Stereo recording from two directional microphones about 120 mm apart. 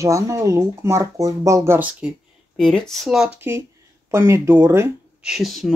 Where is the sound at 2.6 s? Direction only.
5° left (ahead or behind).